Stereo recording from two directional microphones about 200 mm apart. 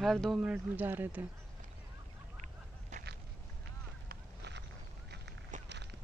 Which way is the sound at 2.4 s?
35° right (ahead or behind).